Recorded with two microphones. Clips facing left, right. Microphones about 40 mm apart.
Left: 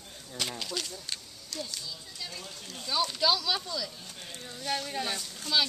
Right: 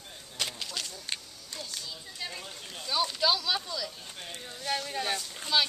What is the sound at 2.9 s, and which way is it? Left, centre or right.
Speech, centre.